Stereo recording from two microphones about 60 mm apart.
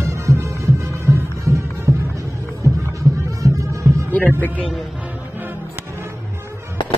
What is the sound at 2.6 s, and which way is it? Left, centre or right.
Music, right.